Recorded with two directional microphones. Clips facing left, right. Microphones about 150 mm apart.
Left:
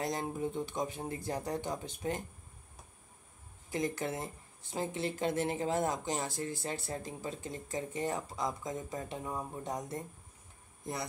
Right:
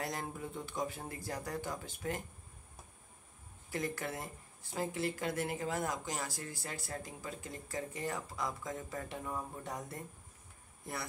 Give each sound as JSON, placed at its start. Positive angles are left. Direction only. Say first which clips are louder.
{"t": 0.0, "sound": "speech", "louder": "left 5 dB", "side_deg": 20}
{"t": 3.7, "sound": "speech", "louder": "left 4 dB", "side_deg": 20}